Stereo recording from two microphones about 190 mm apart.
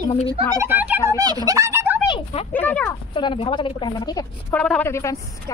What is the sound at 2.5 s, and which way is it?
Speech, 10° left (ahead or behind).